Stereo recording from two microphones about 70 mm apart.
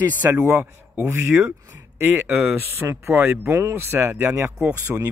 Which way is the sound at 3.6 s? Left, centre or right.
Right.